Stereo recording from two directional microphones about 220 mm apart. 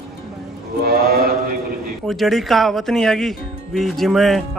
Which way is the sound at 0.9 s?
45° right (ahead or behind).